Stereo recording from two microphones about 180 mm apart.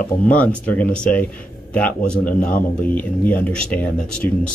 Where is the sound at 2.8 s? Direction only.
10° left (ahead or behind).